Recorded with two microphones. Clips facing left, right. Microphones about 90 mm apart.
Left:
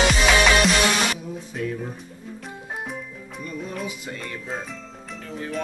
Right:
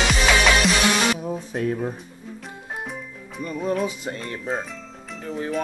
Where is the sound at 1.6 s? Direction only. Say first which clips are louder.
Right 4 dB; 45° right (ahead or behind).